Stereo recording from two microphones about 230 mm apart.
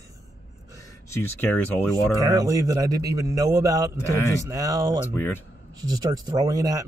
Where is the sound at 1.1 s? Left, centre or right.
Centre.